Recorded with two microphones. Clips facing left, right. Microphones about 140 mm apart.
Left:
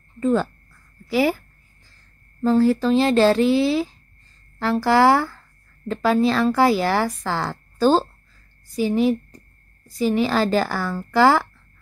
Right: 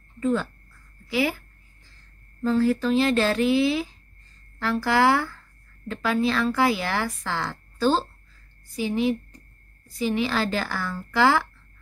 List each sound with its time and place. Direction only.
0.2 s speech: 40° left (ahead or behind)
2.4 s speech: 35° left (ahead or behind)